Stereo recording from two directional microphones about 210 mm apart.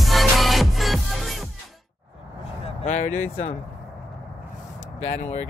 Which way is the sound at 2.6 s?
30° left (ahead or behind).